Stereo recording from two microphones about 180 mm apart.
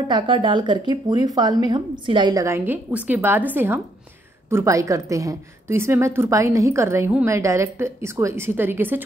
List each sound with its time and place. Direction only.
0.1 s a woman's voice: 25° right (ahead or behind); by 9.0 s 10° right (ahead or behind)